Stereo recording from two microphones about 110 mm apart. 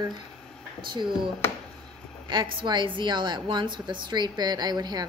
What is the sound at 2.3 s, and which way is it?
A woman's voice, 45° right (ahead or behind).